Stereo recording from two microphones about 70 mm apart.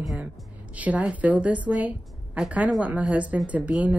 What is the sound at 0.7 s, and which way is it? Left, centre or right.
A woman's voice, right.